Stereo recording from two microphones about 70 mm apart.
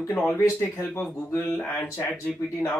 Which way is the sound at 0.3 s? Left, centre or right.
Left.